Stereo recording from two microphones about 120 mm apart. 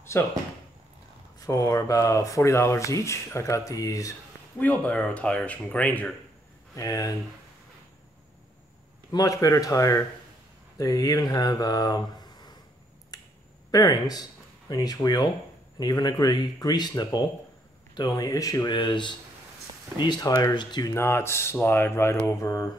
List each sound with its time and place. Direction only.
0.1 s speech: 20° left (ahead or behind)
1.4 s speech: 25° left (ahead or behind)
4.6 s speech: 10° left (ahead or behind)
6.7 s speech: 30° left (ahead or behind)
9.1 s speech: 30° left (ahead or behind)
13.1 s finger snapping: 30° left (ahead or behind)
13.7 s speech: 35° left (ahead or behind)
20.9 s speech: 20° left (ahead or behind)